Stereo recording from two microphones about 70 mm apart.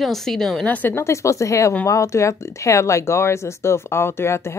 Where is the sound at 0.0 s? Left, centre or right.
Centre.